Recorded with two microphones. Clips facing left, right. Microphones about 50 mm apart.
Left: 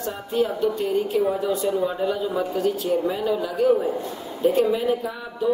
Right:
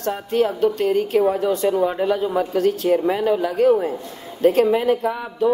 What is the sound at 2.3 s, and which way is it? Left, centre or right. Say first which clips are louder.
Speech: right 4 dB; right.